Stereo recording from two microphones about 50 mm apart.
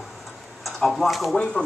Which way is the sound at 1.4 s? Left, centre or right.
Left.